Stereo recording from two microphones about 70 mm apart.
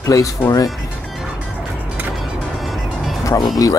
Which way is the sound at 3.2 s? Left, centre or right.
Left.